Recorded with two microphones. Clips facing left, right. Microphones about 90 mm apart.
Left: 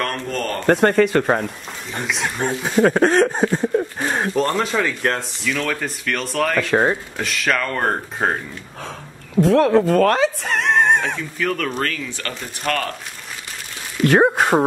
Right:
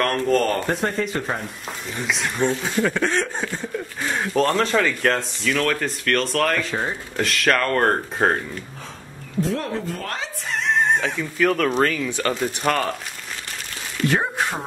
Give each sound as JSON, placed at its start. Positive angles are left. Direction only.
{"t": 0.0, "sound": "speech", "side_deg": 0}
{"t": 0.7, "sound": "speech", "side_deg": 70}
{"t": 2.0, "sound": "speech", "side_deg": 0}
{"t": 2.4, "sound": "speech", "side_deg": 50}
{"t": 4.5, "sound": "speech", "side_deg": 5}
{"t": 6.6, "sound": "speech", "side_deg": 70}
{"t": 7.2, "sound": "speech", "side_deg": 0}
{"t": 9.4, "sound": "speech", "side_deg": 70}
{"t": 11.3, "sound": "speech", "side_deg": -5}
{"t": 11.8, "sound": "speech", "side_deg": -15}
{"t": 14.0, "sound": "speech", "side_deg": 60}